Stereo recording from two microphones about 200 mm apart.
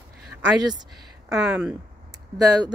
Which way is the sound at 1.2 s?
5° right (ahead or behind).